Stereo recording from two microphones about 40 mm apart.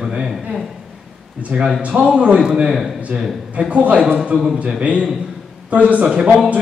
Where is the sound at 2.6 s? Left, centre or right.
Centre.